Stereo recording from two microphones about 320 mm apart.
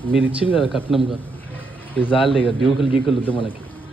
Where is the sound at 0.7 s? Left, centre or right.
Centre.